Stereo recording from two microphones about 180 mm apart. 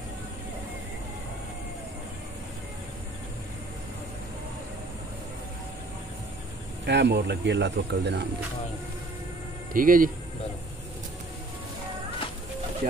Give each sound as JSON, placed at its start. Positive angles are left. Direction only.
{"t": 6.9, "sound": "speech", "side_deg": -70}
{"t": 9.8, "sound": "speech", "side_deg": -50}